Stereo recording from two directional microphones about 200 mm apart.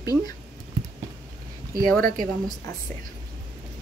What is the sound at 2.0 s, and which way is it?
Speech, 45° right (ahead or behind).